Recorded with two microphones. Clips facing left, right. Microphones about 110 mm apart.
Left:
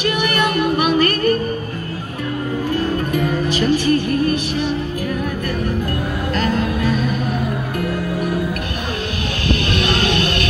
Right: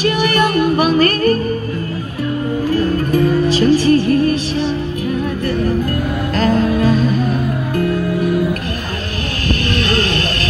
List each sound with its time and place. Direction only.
0.0 s music: 35° right (ahead or behind)
3.1 s music: 30° right (ahead or behind)
6.3 s music: 40° right (ahead or behind)
9.8 s music: 35° right (ahead or behind)